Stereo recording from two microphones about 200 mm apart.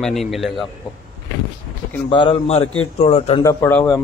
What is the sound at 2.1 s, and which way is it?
Speech, 25° left (ahead or behind).